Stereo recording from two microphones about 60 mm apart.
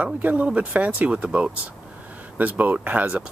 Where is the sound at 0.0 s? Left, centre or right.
Right.